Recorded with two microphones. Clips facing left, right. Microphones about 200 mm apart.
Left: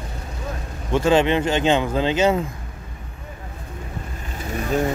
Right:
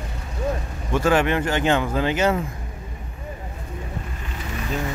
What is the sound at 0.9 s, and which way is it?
Speech, 25° left (ahead or behind).